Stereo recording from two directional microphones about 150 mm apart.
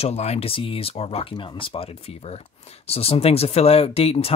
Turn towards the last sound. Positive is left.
turn(degrees=40)  # may be behind; listen again after turning